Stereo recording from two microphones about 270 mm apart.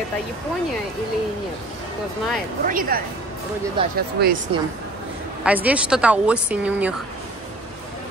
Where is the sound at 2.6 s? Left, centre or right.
Right.